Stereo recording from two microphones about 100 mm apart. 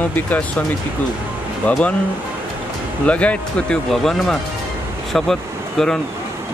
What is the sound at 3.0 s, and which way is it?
Speech, 15° left (ahead or behind).